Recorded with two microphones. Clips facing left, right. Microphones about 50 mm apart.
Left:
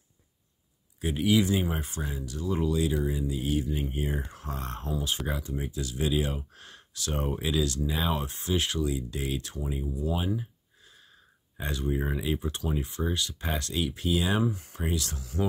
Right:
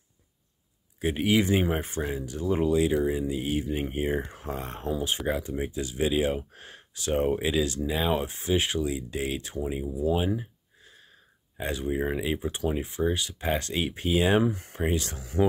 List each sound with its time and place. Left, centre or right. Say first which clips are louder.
1.0 s speech: right 1 dB; right
11.5 s speech: right 2 dB; centre; by 15.4 s right